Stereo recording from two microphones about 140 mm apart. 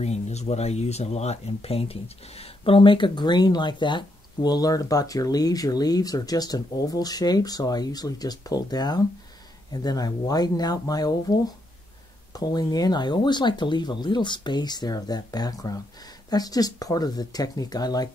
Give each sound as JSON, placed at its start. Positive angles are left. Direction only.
{"t": 0.0, "sound": "speech", "side_deg": 50}